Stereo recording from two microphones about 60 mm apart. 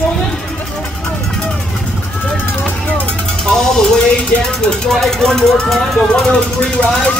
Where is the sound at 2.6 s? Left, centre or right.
Left.